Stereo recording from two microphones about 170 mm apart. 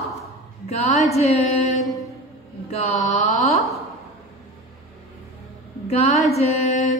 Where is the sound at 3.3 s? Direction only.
Centre (ahead or behind).